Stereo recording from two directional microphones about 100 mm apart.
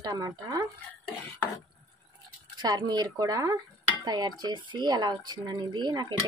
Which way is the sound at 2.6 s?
45° right (ahead or behind).